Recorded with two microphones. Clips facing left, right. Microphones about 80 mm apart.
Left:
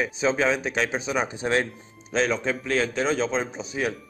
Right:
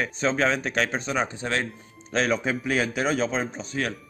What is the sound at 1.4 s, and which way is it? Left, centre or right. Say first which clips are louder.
Speech: left 4 dB; centre.